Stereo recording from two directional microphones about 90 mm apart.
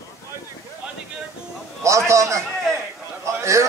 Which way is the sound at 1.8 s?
35° right (ahead or behind).